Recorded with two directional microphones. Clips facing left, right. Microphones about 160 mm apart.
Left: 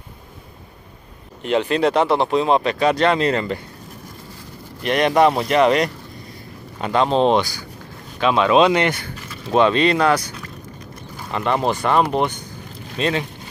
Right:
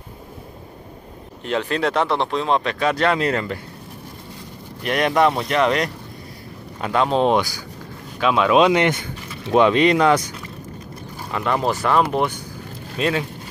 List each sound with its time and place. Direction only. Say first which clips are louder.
1.4 s speech: left 4 dB; centre (ahead or behind)
4.8 s speech: left 2 dB; centre (ahead or behind)
11.3 s speech: left 1 dB; centre (ahead or behind)